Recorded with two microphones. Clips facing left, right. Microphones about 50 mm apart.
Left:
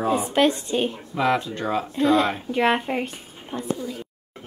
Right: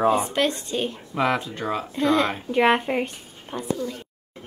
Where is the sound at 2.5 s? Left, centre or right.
Centre.